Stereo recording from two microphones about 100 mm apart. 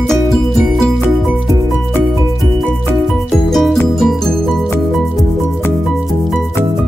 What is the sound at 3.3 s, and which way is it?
Music, centre (ahead or behind).